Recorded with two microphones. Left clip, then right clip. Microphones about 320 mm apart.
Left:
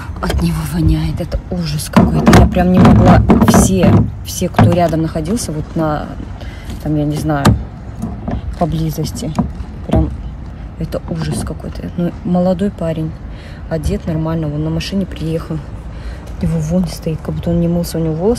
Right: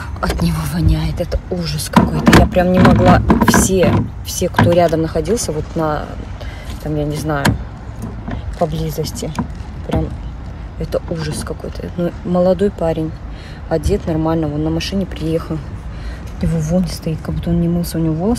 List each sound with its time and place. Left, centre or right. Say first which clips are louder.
0.2 s speech: even; centre
3.3 s speech: left 2 dB; left
3.6 s speech: left 1 dB; centre
8.5 s speech: even; centre
9.9 s vehicle: left 4 dB; centre
10.8 s speech: right 2 dB; centre